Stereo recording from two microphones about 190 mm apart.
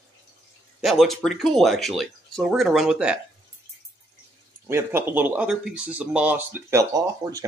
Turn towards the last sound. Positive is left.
turn(degrees=-15)  # may be behind; listen again after turning